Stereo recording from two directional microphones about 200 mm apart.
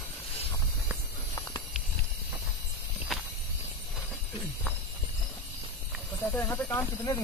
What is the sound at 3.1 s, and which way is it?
Walk, centre (ahead or behind).